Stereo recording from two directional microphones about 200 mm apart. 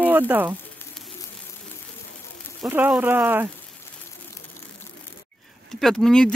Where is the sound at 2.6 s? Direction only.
10° right (ahead or behind).